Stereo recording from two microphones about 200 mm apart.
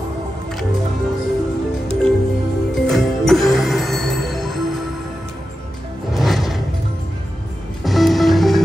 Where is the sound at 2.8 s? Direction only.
Centre (ahead or behind).